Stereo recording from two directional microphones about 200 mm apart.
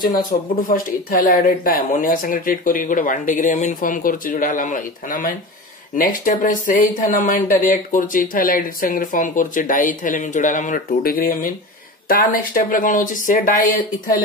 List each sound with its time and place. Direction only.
0.3 s speech: 40° left (ahead or behind)